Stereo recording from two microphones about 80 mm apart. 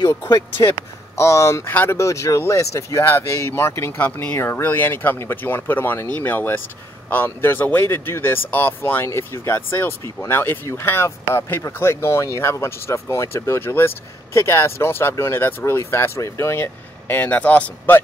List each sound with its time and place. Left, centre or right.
1.1 s speech: left
1.7 s speech: left
2.0 s speech: left